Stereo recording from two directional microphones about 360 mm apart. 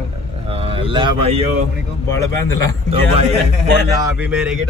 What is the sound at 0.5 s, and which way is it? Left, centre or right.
Speech, centre.